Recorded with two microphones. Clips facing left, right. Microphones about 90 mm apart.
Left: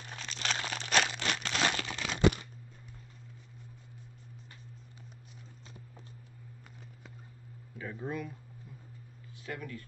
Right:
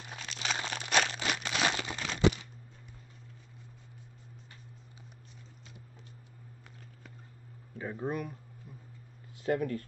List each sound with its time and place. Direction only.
0.0 s crumpling: 5° right (ahead or behind)
7.7 s speech: 25° right (ahead or behind)
9.4 s speech: 45° right (ahead or behind)